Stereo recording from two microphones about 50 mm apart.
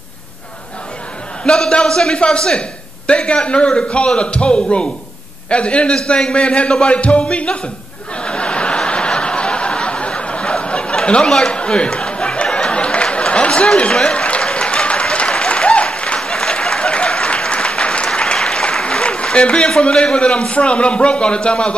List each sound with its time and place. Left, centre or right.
1.4 s a man's voice: centre
8.2 s snicker: left
13.9 s applause: left
19.8 s a man's voice: centre